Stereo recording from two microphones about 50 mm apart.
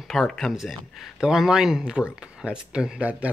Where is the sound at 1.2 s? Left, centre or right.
Centre.